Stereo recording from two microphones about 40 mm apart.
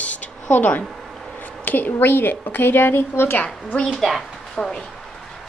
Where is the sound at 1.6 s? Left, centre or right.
Left.